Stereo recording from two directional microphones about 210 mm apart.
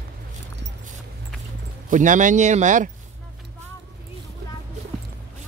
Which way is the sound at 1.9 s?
35° right (ahead or behind).